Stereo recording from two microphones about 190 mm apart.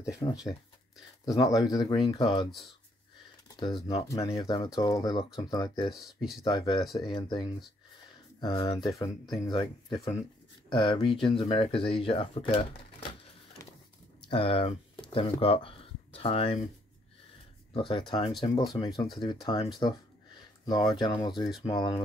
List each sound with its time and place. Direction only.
0.2 s speech: 20° left (ahead or behind)
3.4 s speech: 25° left (ahead or behind)
13.6 s vehicle: 15° left (ahead or behind)
14.3 s speech: 25° left (ahead or behind)
17.7 s speech: 25° left (ahead or behind)